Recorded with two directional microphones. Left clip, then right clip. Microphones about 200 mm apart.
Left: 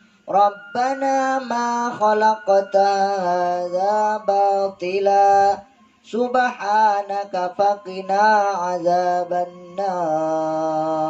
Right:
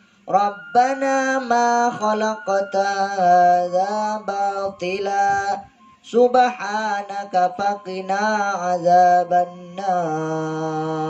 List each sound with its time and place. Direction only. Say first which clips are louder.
0.3 s mantra: left 1 dB; 50° right (ahead or behind)